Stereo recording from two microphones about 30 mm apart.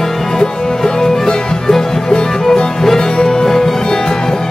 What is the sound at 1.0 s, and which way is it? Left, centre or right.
Music, centre.